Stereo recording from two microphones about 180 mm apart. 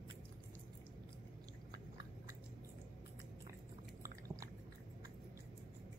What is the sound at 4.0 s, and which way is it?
Chewing, 20° right (ahead or behind).